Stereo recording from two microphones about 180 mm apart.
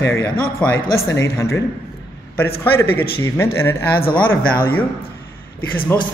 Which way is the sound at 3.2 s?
15° left (ahead or behind).